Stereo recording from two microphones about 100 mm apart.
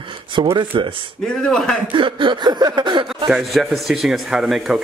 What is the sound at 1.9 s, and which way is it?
Speech, 55° right (ahead or behind).